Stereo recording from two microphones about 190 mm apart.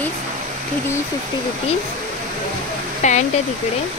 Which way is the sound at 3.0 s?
40° left (ahead or behind).